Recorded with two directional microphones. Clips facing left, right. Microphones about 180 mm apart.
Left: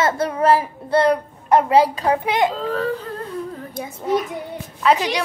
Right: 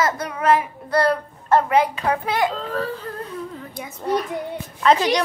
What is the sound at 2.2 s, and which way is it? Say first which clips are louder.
Speech: left 2 dB; 20° left (ahead or behind).